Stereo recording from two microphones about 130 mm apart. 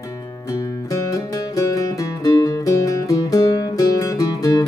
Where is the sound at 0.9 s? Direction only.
25° left (ahead or behind).